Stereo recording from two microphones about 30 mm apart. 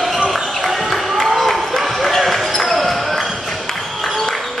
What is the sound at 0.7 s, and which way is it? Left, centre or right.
Basketball bounce, centre.